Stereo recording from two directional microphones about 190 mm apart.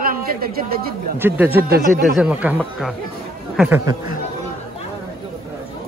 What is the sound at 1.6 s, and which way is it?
Speech, 55° right (ahead or behind).